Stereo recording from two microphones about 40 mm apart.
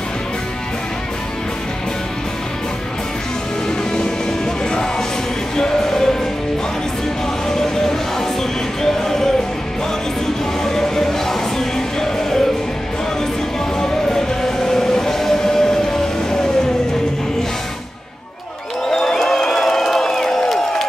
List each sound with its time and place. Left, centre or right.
3.9 s music: centre
7.4 s music: centre
10.6 s music: centre
13.7 s music: centre
18.9 s crowd: centre